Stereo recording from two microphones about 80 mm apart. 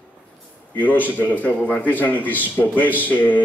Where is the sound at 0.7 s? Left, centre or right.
Left.